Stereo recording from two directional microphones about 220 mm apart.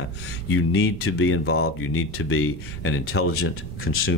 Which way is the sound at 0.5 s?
75° left (ahead or behind).